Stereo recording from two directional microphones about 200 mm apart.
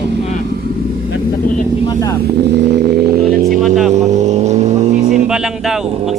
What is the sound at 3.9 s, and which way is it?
Vehicle, 35° right (ahead or behind).